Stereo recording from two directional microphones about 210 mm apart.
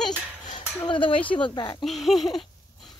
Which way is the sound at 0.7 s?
20° left (ahead or behind).